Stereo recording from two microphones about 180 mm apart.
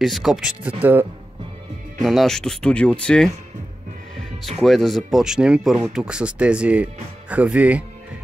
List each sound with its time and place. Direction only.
0.0 s speech: centre (ahead or behind)
2.0 s speech: centre (ahead or behind)
4.4 s speech: centre (ahead or behind)